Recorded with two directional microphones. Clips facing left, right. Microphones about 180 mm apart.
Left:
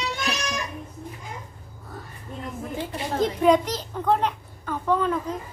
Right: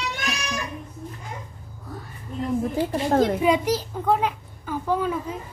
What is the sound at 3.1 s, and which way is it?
Speech, 55° right (ahead or behind).